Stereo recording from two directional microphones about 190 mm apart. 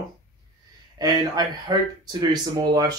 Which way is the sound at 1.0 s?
20° right (ahead or behind).